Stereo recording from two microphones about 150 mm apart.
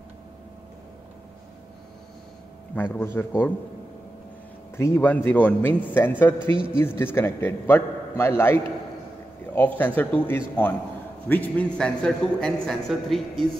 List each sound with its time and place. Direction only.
2.7 s a man's voice: 10° left (ahead or behind)
4.7 s a man's voice: 15° left (ahead or behind)
9.6 s a man's voice: 10° left (ahead or behind)